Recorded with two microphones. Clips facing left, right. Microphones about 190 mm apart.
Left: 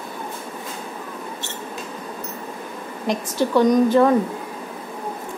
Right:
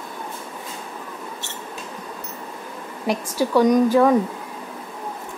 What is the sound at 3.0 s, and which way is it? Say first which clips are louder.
A woman's voice: even; 10° right (ahead or behind).